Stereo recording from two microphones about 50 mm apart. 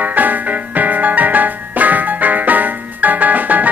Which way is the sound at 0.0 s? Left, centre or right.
Right.